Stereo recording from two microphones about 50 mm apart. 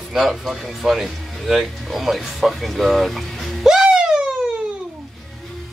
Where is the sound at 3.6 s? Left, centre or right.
Centre.